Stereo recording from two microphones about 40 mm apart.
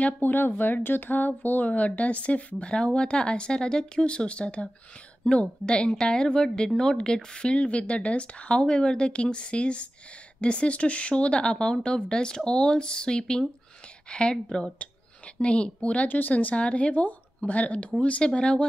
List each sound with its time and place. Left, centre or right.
0.2 s speech: left
1.7 s a woman's voice: left
16.1 s speech: left
16.5 s a woman's voice: left